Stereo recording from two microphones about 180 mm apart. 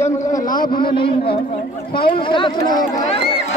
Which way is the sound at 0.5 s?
25° left (ahead or behind).